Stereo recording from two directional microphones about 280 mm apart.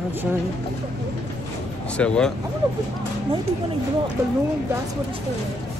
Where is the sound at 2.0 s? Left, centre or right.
Centre.